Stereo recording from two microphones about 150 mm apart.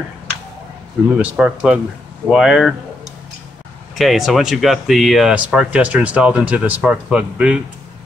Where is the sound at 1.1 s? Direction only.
5° right (ahead or behind).